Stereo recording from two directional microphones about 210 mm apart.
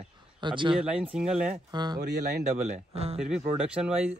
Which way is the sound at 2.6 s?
30° right (ahead or behind).